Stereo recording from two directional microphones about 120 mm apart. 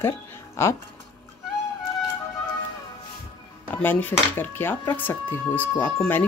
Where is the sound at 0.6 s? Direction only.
25° left (ahead or behind).